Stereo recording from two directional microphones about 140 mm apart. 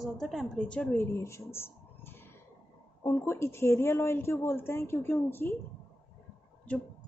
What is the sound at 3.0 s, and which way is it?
A woman's voice, 20° left (ahead or behind).